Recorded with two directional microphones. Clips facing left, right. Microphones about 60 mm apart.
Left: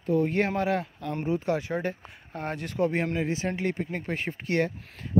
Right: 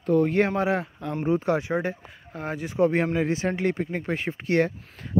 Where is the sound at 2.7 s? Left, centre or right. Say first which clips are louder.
Right 5 dB; right.